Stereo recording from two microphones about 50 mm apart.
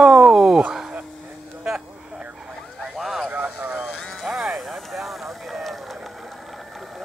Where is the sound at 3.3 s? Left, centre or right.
Right.